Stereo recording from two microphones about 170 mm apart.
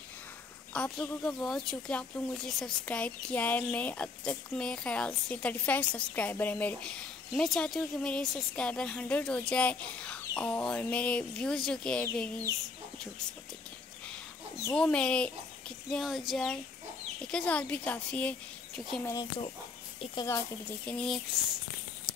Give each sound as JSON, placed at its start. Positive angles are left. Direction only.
{"t": 0.7, "sound": "a woman's voice", "side_deg": 5}
{"t": 14.7, "sound": "a woman's voice", "side_deg": 5}
{"t": 19.0, "sound": "speech", "side_deg": 25}
{"t": 20.8, "sound": "a woman's voice", "side_deg": 5}